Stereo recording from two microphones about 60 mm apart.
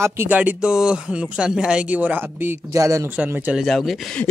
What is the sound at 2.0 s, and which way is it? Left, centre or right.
Speech, right.